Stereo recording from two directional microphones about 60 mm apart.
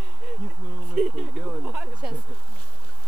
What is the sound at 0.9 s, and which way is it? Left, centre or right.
Speech, centre.